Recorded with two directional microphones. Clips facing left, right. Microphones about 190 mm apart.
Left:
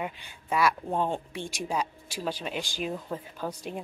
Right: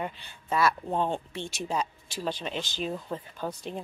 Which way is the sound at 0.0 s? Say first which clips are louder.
Even; 10° left (ahead or behind).